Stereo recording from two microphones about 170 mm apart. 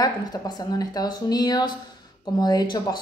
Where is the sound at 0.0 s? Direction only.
20° left (ahead or behind).